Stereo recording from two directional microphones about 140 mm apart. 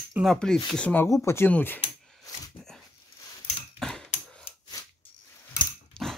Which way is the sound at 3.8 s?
5° left (ahead or behind).